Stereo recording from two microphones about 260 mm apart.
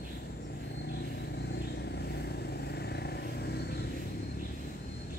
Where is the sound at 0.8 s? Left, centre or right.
Left.